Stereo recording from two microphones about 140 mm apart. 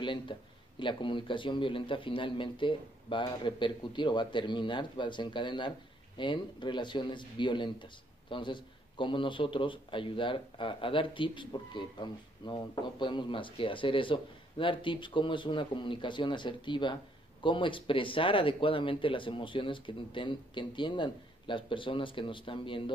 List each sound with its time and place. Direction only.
0.0 s speech: 35° left (ahead or behind)